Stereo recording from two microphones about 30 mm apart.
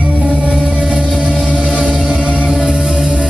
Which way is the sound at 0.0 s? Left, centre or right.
Right.